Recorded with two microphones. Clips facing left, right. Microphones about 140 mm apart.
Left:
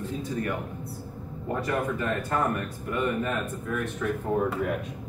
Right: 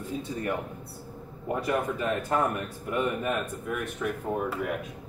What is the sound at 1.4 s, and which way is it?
Speech, 15° right (ahead or behind).